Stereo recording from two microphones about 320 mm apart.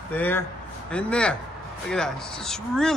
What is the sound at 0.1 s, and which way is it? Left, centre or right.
Speech, centre.